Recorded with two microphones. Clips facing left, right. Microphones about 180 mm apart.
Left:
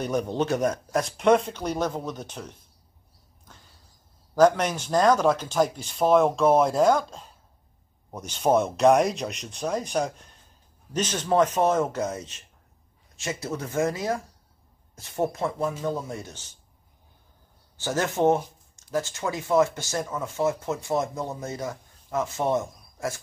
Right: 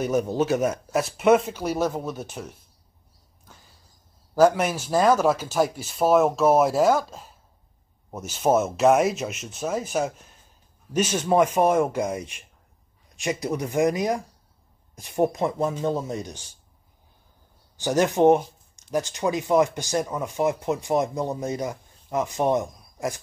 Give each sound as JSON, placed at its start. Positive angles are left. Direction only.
{"t": 0.0, "sound": "speech", "side_deg": -5}
{"t": 4.4, "sound": "speech", "side_deg": -5}
{"t": 17.7, "sound": "speech", "side_deg": -15}